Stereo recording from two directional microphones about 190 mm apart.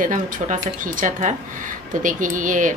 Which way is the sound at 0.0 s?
45° right (ahead or behind).